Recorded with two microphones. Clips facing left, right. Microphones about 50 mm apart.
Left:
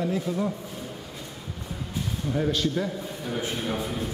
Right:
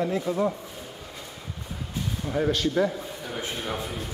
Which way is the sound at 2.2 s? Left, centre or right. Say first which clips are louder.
Right 1 dB; centre.